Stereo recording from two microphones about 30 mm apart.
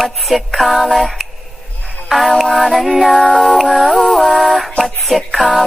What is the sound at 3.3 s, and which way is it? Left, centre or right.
Music, left.